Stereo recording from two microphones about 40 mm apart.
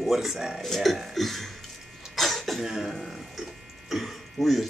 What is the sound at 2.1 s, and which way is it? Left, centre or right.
Cough, centre.